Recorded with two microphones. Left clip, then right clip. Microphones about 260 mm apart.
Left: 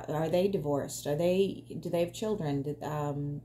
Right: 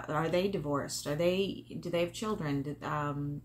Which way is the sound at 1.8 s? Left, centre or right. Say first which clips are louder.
Left 2 dB; centre.